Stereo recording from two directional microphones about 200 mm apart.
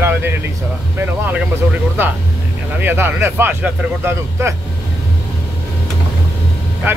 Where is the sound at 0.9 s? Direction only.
10° right (ahead or behind).